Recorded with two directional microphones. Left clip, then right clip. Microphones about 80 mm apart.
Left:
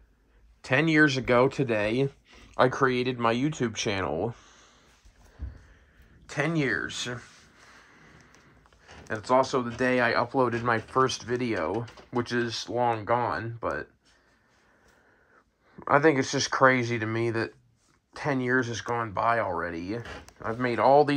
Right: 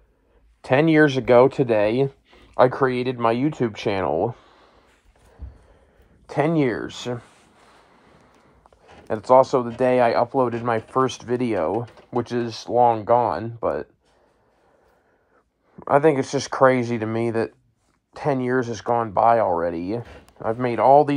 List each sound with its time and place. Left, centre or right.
0.7 s speech: centre
6.2 s a sound: right
9.1 s speech: right; by 10.8 s centre
10.9 s speech: right
15.7 s a man's voice: right
20.6 s speech: centre